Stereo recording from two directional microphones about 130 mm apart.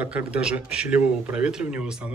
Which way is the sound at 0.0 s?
10° right (ahead or behind).